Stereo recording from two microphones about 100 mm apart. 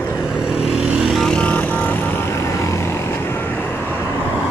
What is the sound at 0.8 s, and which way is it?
Vehicle, 10° right (ahead or behind).